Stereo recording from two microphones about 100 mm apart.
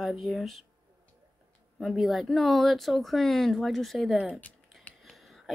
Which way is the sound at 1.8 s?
Centre (ahead or behind).